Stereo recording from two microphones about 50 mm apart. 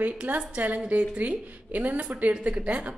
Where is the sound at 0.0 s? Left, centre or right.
Right.